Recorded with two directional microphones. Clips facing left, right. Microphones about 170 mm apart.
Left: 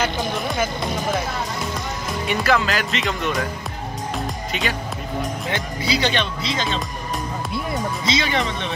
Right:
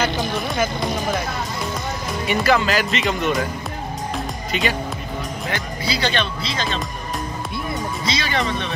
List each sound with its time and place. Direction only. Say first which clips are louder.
2.2 s speech: right 2 dB; centre (ahead or behind)
4.5 s speech: right 5 dB; centre (ahead or behind)
5.5 s speech: left 1 dB; 20° left (ahead or behind)
8.0 s speech: left 1 dB; 20° left (ahead or behind)